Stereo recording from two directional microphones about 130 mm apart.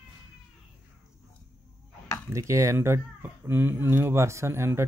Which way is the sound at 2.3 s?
25° right (ahead or behind).